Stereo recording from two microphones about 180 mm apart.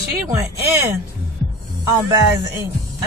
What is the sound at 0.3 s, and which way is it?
Speech, 15° right (ahead or behind).